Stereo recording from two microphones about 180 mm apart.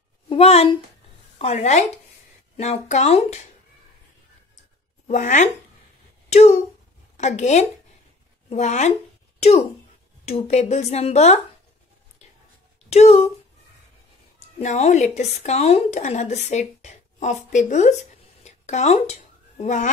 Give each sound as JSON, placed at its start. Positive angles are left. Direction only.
{"t": 0.3, "sound": "a woman's voice", "side_deg": 35}
{"t": 5.0, "sound": "speech", "side_deg": 45}
{"t": 7.2, "sound": "speech", "side_deg": 40}
{"t": 12.9, "sound": "speech", "side_deg": 35}
{"t": 14.6, "sound": "speech", "side_deg": 40}
{"t": 18.4, "sound": "a sound", "side_deg": 40}
{"t": 19.6, "sound": "speech", "side_deg": 45}